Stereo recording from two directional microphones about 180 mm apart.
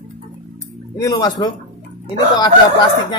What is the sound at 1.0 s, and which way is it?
Speech, 20° left (ahead or behind).